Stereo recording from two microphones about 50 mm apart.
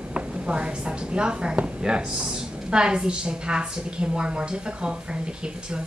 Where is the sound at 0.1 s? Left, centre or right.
Centre.